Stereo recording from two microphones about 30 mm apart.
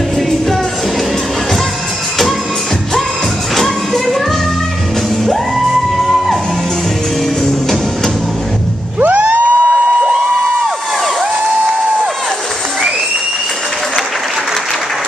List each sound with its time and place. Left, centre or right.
3.5 s music: centre
5.7 s music: centre
9.0 s a sound: right